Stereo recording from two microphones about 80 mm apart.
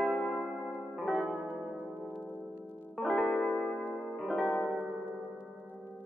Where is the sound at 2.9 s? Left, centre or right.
Centre.